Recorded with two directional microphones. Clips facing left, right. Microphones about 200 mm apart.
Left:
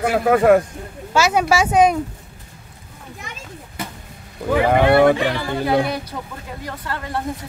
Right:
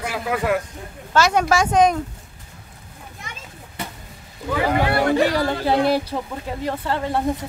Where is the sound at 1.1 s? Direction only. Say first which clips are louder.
Left 1 dB; 5° left (ahead or behind).